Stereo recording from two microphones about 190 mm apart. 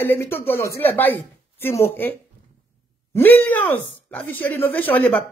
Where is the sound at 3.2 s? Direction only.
10° left (ahead or behind).